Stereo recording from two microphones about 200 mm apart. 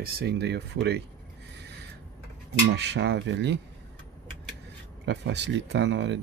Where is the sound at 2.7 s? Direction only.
60° right (ahead or behind).